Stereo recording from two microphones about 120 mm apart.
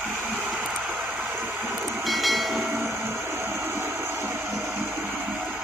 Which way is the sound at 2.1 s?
Centre (ahead or behind).